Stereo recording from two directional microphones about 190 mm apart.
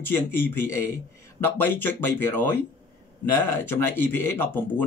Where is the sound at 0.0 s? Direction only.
10° left (ahead or behind).